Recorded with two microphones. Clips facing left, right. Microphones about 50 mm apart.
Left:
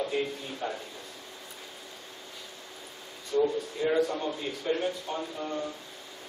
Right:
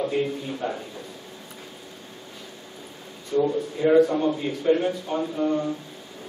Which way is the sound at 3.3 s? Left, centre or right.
Right.